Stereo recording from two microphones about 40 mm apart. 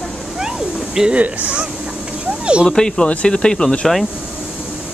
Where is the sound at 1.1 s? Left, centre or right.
Right.